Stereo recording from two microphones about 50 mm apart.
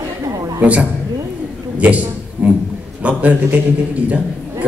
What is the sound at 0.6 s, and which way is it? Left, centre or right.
Speech, right.